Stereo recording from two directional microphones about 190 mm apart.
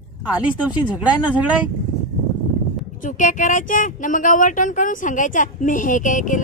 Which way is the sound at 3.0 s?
45° left (ahead or behind).